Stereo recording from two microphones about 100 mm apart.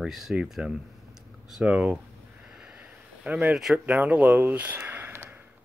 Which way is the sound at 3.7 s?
15° right (ahead or behind).